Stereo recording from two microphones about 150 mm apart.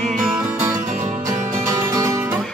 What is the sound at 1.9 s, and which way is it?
Music, 20° right (ahead or behind).